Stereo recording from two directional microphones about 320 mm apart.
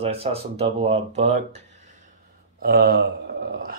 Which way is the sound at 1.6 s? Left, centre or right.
Right.